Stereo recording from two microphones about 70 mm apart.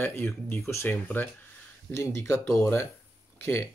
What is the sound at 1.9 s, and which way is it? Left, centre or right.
Speech, left.